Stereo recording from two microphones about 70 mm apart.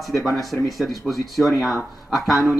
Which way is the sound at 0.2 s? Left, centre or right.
Centre.